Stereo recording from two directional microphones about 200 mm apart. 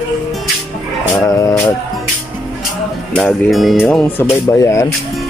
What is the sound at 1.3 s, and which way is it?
Speech, 15° left (ahead or behind).